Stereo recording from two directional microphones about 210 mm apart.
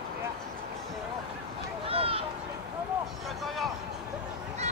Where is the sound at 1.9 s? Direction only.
25° right (ahead or behind).